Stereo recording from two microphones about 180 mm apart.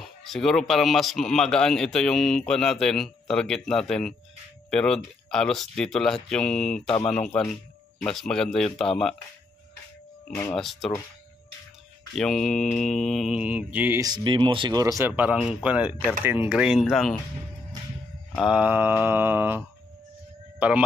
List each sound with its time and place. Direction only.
0.0 s speech: centre (ahead or behind)
10.5 s speech: centre (ahead or behind)
12.2 s speech: centre (ahead or behind)
14.0 s speech: 25° right (ahead or behind); by 15.3 s 10° right (ahead or behind)
15.3 s mantra: 5° right (ahead or behind)
16.3 s speech: 5° right (ahead or behind)
18.3 s mantra: 5° right (ahead or behind)
20.5 s speech: 10° right (ahead or behind)